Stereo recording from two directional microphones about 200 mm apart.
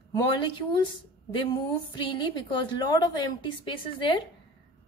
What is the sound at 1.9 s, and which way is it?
A woman's voice, 25° left (ahead or behind).